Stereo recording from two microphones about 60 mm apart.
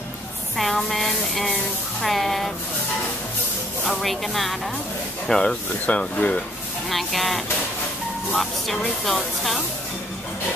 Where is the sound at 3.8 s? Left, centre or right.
Centre.